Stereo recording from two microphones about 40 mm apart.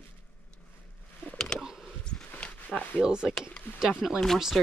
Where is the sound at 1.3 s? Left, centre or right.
Centre.